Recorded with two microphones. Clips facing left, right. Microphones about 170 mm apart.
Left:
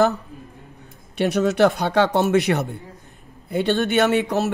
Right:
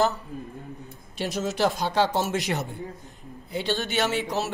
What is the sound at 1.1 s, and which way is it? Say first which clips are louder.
A man's voice: left 9 dB; 65° left (ahead or behind).